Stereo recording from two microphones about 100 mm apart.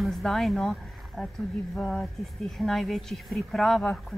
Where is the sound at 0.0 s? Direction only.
Centre (ahead or behind).